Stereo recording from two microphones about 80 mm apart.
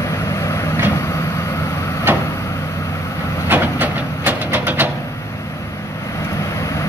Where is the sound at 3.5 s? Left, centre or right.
Right.